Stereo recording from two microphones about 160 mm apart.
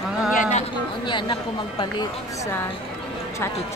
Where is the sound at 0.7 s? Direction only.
30° left (ahead or behind).